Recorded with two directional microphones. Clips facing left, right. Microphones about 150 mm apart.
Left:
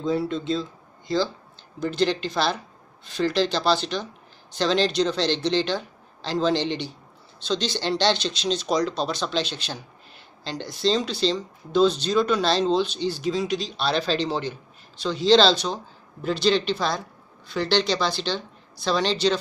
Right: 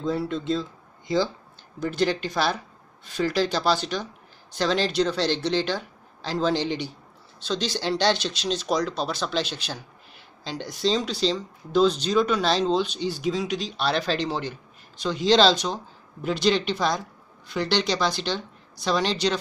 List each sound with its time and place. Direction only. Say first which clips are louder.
0.0 s speech: left 2 dB; 5° right (ahead or behind)
1.0 s speech: even; 20° right (ahead or behind)
1.8 s speech: left 1 dB; 10° right (ahead or behind)